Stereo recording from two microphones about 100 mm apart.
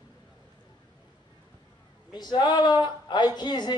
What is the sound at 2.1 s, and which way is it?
Speech, 45° left (ahead or behind).